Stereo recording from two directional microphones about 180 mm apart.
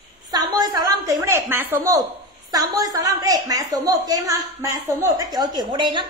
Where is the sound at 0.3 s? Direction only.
20° right (ahead or behind).